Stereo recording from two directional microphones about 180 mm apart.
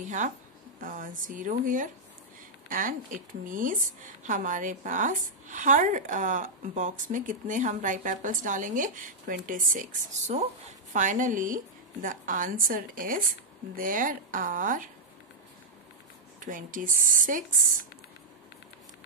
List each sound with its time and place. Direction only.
0.0 s a sound: 45° right (ahead or behind)
0.7 s a woman's voice: 50° right (ahead or behind)
16.3 s a woman's voice: 45° right (ahead or behind)